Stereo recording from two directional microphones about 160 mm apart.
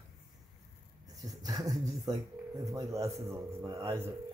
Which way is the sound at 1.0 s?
20° right (ahead or behind).